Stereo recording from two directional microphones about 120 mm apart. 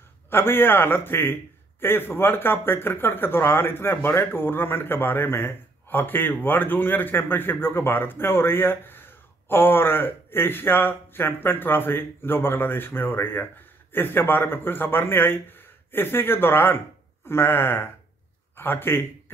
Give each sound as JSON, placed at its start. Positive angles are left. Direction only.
{"t": 0.3, "sound": "a man's voice", "side_deg": 20}